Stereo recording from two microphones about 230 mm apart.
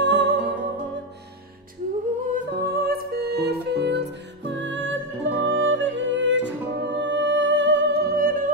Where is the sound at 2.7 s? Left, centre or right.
Right.